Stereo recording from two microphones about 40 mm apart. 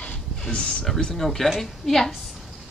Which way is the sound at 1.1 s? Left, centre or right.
Centre.